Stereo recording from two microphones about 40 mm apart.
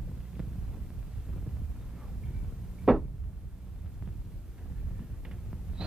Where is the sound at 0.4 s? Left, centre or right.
Centre.